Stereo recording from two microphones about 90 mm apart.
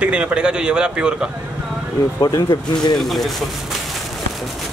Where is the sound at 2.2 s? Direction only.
40° left (ahead or behind).